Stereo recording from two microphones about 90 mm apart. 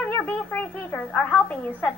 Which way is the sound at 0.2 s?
20° left (ahead or behind).